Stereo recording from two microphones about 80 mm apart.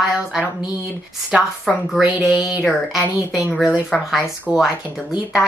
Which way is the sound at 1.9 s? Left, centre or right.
Centre.